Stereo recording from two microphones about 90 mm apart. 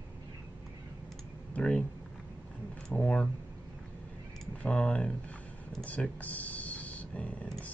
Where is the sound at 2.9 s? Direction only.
15° left (ahead or behind).